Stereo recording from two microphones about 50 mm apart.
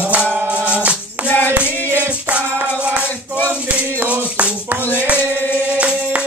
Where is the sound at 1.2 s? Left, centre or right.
Left.